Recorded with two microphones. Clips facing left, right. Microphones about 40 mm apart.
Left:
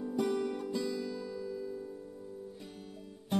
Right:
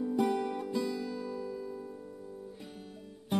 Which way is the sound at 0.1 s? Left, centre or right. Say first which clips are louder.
Even; centre.